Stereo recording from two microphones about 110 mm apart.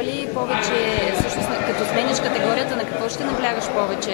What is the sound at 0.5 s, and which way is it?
A man's voice, 20° left (ahead or behind).